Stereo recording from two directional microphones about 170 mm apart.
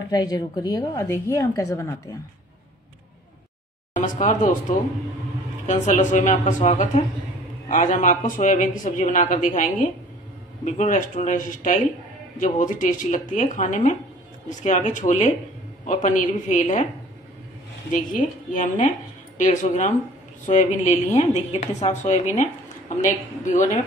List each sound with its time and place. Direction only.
0.1 s speech: 25° left (ahead or behind)
3.9 s a woman's voice: 50° left (ahead or behind)
17.9 s a woman's voice: 50° left (ahead or behind)